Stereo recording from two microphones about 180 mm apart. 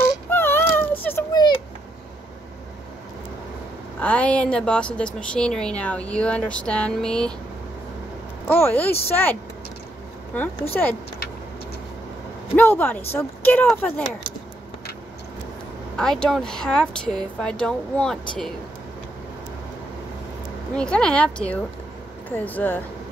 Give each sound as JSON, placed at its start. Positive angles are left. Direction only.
{"t": 0.3, "sound": "cat", "side_deg": 10}
{"t": 1.3, "sound": "a sound", "side_deg": 25}
{"t": 4.0, "sound": "a woman's voice", "side_deg": 5}
{"t": 8.5, "sound": "a woman's voice", "side_deg": 10}
{"t": 10.7, "sound": "a woman's voice", "side_deg": 10}
{"t": 12.5, "sound": "a woman's voice", "side_deg": 10}
{"t": 16.0, "sound": "speech", "side_deg": 5}
{"t": 20.7, "sound": "a woman's voice", "side_deg": 5}